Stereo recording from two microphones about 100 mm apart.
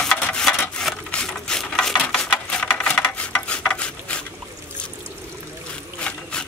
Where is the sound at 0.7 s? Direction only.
10° left (ahead or behind).